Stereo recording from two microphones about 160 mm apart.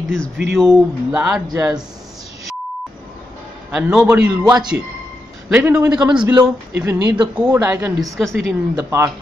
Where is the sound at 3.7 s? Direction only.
5° right (ahead or behind).